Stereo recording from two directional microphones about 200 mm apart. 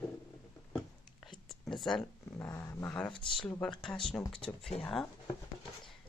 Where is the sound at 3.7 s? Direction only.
25° left (ahead or behind).